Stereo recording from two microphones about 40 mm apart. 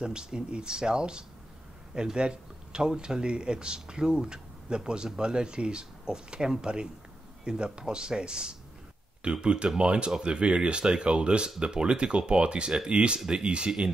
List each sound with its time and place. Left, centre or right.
0.0 s speech: right